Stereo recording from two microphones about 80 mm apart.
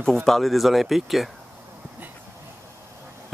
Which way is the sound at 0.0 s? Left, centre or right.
Centre.